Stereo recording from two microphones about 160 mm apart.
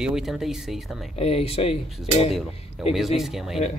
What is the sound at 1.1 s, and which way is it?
Speech, 40° left (ahead or behind).